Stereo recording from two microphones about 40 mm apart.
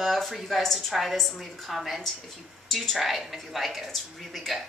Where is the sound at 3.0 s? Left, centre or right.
Centre.